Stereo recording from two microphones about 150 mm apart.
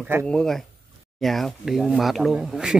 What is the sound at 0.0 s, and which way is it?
Speech, 15° right (ahead or behind).